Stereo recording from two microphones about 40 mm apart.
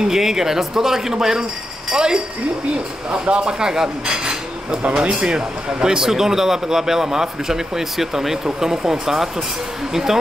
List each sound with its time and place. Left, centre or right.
0.0 s a man's voice: centre
3.1 s dishes: right
5.0 s a man's voice: right